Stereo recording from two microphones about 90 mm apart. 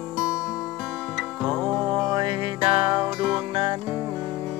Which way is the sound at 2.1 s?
60° right (ahead or behind).